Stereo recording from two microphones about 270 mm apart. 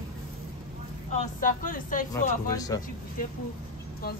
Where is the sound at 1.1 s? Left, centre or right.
Left.